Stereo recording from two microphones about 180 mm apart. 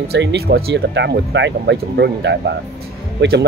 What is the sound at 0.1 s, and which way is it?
Speech, 70° right (ahead or behind).